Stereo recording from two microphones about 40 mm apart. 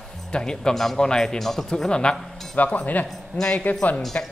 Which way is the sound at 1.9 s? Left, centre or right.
Left.